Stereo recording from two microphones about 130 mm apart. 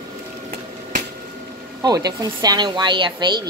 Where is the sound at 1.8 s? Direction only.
30° right (ahead or behind).